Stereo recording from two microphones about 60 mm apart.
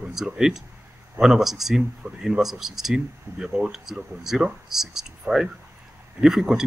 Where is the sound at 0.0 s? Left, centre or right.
Centre.